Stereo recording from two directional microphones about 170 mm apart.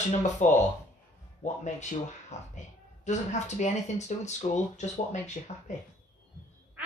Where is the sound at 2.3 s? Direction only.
40° left (ahead or behind).